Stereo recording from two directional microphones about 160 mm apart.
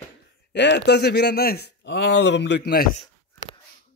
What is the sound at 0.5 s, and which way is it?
Speech, 90° left.